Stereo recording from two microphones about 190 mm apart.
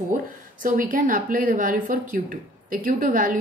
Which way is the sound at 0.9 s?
45° right (ahead or behind).